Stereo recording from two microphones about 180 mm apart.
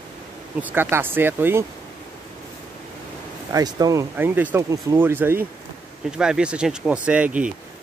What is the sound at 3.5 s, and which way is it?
Speech, 20° right (ahead or behind).